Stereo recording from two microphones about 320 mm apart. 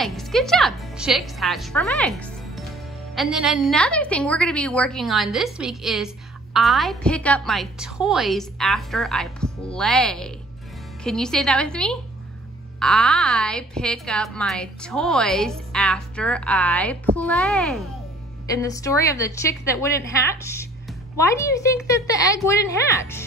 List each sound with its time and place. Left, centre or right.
0.0 s a woman's voice: centre